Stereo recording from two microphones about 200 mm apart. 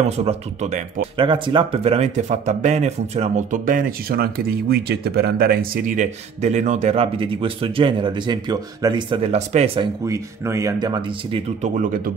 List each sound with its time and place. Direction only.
0.0 s speech: 30° right (ahead or behind)
1.2 s speech: 25° right (ahead or behind)
10.0 s speech: 15° right (ahead or behind)
11.6 s speech: 40° right (ahead or behind)